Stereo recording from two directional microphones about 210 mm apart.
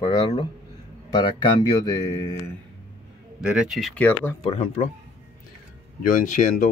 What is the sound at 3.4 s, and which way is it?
Speech, 5° right (ahead or behind).